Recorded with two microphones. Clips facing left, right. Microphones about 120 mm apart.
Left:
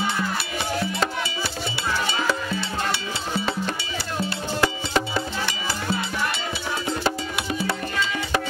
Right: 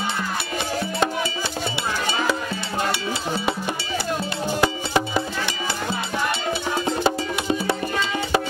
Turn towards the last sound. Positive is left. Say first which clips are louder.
# right 4 dB
turn(degrees=-20)  # may be behind; listen again after turning